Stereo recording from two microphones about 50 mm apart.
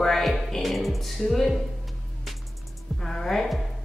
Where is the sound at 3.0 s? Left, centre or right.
Centre.